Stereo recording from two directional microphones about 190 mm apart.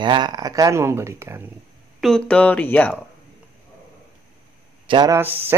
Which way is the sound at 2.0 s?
5° left (ahead or behind).